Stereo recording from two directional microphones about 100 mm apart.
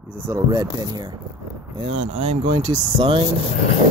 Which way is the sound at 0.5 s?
45° right (ahead or behind).